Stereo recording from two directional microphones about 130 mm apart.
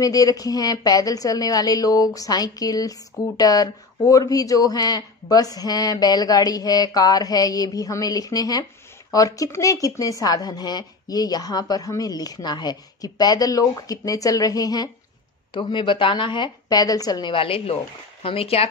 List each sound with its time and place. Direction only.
0.0 s a woman's voice: 30° left (ahead or behind)
15.5 s a woman's voice: 40° left (ahead or behind)